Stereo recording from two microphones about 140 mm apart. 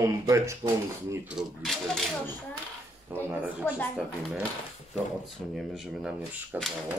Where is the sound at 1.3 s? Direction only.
Centre (ahead or behind).